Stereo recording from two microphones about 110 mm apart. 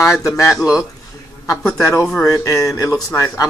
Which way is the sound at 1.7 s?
25° left (ahead or behind).